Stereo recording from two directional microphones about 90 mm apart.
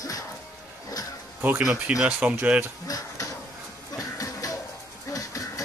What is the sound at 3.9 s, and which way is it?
Music, 40° left (ahead or behind).